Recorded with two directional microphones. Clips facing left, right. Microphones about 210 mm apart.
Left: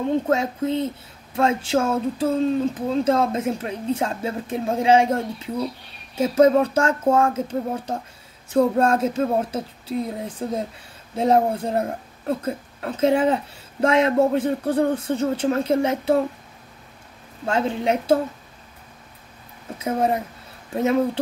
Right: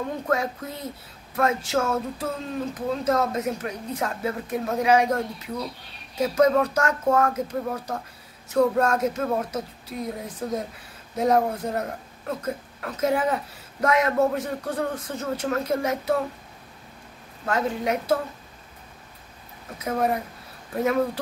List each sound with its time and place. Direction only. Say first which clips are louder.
0.1 s speech: left 5 dB; 25° left (ahead or behind)
17.5 s speech: left 3 dB; 25° left (ahead or behind)
19.8 s speech: left 3 dB; 25° left (ahead or behind)